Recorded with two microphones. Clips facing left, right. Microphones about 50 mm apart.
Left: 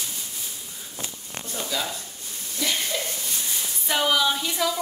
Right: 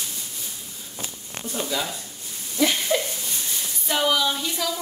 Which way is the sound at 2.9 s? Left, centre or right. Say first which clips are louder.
Right 7 dB; right.